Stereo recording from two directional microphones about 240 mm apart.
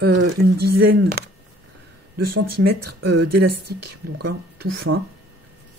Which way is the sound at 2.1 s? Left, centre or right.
Right.